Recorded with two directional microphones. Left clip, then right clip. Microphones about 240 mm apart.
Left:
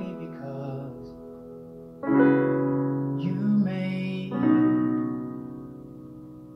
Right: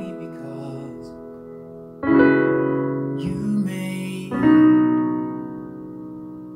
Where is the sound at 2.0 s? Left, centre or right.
Right.